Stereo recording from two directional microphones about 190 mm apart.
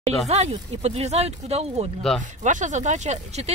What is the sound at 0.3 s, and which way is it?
Speech, 35° right (ahead or behind).